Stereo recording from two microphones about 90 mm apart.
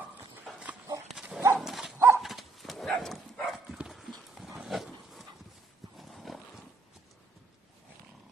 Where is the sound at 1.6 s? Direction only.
Centre (ahead or behind).